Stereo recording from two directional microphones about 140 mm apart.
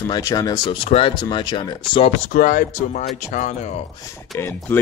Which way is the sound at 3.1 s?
65° left (ahead or behind).